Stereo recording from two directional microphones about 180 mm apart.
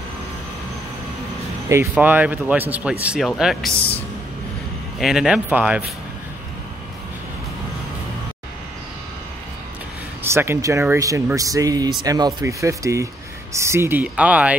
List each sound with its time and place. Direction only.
1.7 s speech: 10° right (ahead or behind)
4.9 s speech: centre (ahead or behind)
10.2 s speech: 15° right (ahead or behind)